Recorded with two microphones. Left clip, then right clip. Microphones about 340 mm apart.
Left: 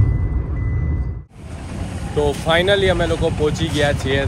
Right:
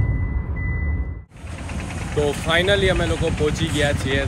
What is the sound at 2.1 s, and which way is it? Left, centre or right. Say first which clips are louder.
Speech: left 3 dB; centre.